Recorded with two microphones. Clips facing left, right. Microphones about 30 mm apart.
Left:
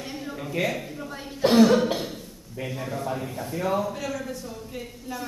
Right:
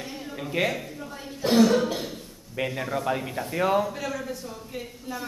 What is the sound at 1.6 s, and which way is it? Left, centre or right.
Cough, centre.